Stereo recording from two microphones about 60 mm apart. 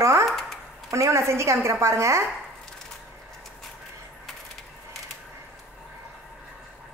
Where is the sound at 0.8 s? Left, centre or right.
Right.